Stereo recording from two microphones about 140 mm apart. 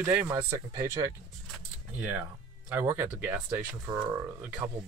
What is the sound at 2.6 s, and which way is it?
Speech, 15° right (ahead or behind).